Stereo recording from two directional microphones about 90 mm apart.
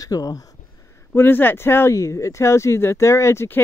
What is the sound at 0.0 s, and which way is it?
Speech, 45° left (ahead or behind).